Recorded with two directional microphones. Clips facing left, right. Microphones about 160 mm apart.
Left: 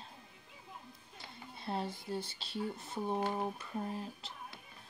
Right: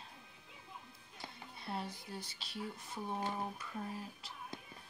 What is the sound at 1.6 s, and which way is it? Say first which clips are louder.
Speech: left 4 dB; 25° left (ahead or behind).